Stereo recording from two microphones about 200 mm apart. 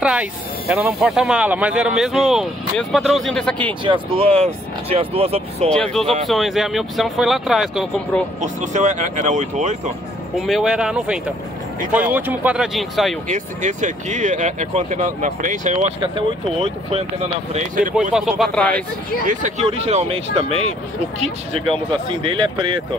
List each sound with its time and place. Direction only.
0.0 s speech: 5° right (ahead or behind)
3.8 s speech: 25° right (ahead or behind)
5.7 s speech: 5° left (ahead or behind)
8.4 s speech: 35° right (ahead or behind)
10.4 s speech: centre (ahead or behind)
13.3 s speech: 35° right (ahead or behind)
16.0 s speech: 25° right (ahead or behind)
17.5 s speech: 40° right (ahead or behind)
18.4 s speech: 5° left (ahead or behind)
19.2 s speech: 35° right (ahead or behind)